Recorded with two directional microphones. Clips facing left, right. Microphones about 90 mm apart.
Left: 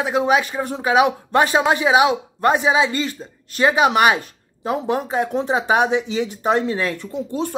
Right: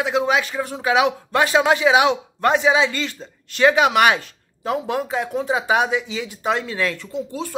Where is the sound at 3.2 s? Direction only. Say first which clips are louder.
Left 2 dB; 5° left (ahead or behind).